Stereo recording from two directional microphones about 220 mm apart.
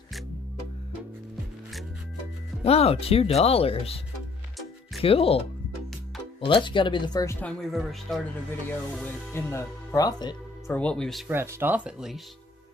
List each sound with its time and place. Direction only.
2.6 s speech: 25° left (ahead or behind)
5.0 s speech: 25° left (ahead or behind)
6.4 s speech: 20° left (ahead or behind)
7.4 s speech: centre (ahead or behind); by 10.3 s 20° left (ahead or behind)
10.7 s speech: 5° left (ahead or behind)